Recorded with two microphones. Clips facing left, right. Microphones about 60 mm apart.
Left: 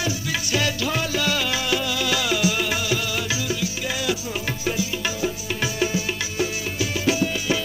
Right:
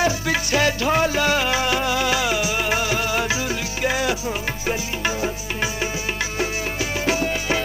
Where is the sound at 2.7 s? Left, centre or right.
Right.